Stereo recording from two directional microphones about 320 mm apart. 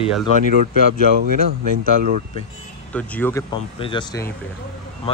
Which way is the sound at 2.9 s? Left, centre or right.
Centre.